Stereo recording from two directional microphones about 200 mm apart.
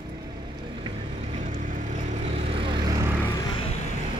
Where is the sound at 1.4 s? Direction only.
40° right (ahead or behind).